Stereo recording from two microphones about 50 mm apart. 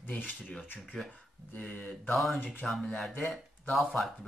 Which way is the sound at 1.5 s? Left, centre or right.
Centre.